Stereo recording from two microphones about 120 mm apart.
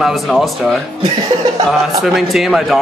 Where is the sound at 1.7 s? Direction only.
Centre (ahead or behind).